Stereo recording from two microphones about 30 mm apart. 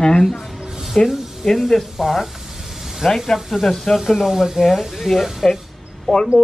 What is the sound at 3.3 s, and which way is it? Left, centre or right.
Speech, centre.